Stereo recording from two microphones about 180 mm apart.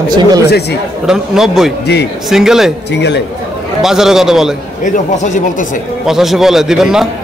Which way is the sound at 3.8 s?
Centre (ahead or behind).